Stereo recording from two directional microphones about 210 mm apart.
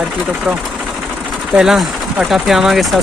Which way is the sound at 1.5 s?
Centre (ahead or behind).